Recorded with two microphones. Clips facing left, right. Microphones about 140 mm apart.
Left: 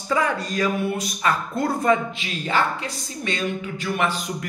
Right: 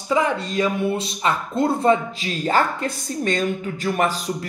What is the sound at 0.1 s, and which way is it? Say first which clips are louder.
Speech: right 2 dB; 20° right (ahead or behind).